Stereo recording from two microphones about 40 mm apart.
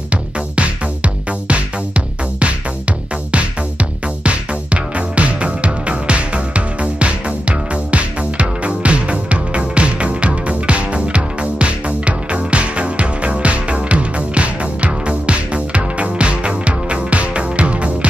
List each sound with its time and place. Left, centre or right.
0.1 s music: right
4.2 s music: right